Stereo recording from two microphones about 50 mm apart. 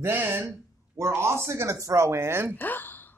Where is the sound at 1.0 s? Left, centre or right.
Right.